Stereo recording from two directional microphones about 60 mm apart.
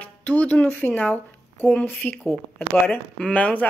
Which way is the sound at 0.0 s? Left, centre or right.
Left.